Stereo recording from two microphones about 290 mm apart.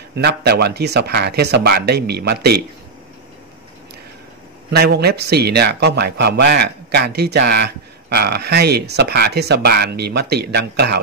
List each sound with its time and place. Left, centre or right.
0.1 s a man's voice: right
4.7 s a man's voice: right